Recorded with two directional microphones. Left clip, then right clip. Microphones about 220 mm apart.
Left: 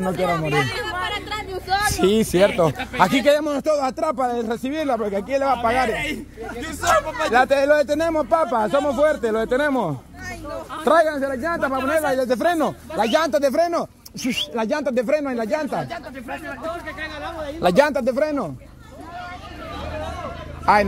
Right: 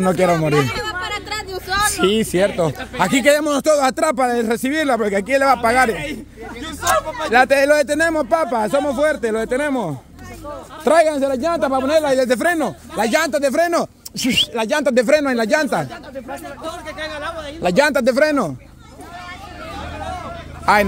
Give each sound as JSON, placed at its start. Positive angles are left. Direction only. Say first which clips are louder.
{"t": 0.2, "sound": "a sound", "louder": "right 3 dB", "side_deg": -30}
{"t": 1.5, "sound": "vehicle", "louder": "right 2 dB", "side_deg": -40}
{"t": 2.0, "sound": "speech", "louder": "even", "side_deg": -5}
{"t": 3.0, "sound": "a man's voice", "louder": "right 2 dB", "side_deg": -15}
{"t": 6.6, "sound": "speech", "louder": "right 1 dB", "side_deg": 10}
{"t": 7.3, "sound": "speech", "louder": "right 3 dB", "side_deg": -20}
{"t": 10.8, "sound": "a man's voice", "louder": "right 3 dB", "side_deg": -20}
{"t": 13.6, "sound": "a man's voice", "louder": "right 3 dB", "side_deg": -25}
{"t": 16.8, "sound": "a sound", "louder": "right 3 dB", "side_deg": -50}
{"t": 17.6, "sound": "speech", "louder": "even", "side_deg": -5}
{"t": 17.9, "sound": "speech", "louder": "right 6 dB", "side_deg": -30}
{"t": 20.7, "sound": "speech", "louder": "right 2 dB", "side_deg": -15}